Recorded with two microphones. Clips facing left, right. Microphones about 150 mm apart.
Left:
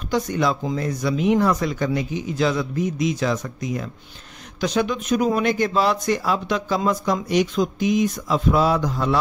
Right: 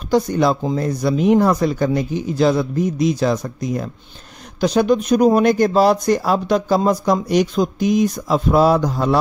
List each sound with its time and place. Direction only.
0.1 s speech: 35° right (ahead or behind)